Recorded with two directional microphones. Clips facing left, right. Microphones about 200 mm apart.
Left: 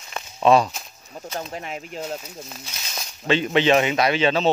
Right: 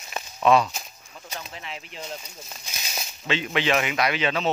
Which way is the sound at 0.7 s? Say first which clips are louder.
Even; centre (ahead or behind).